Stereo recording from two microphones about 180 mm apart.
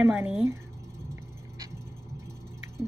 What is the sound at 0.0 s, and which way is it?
Speech, 10° right (ahead or behind).